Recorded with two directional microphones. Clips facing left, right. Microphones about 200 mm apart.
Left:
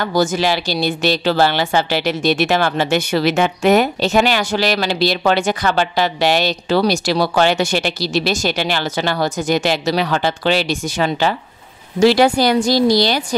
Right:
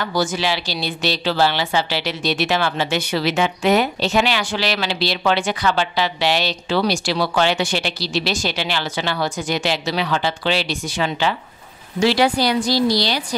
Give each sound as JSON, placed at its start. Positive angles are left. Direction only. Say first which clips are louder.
{"t": 0.0, "sound": "speech", "louder": "left 5 dB", "side_deg": 45}